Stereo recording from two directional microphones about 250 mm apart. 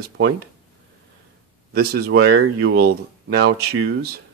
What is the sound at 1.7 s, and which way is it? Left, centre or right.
Speech, right.